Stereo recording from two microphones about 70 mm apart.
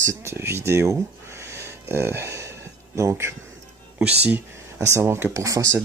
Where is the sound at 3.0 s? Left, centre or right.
Right.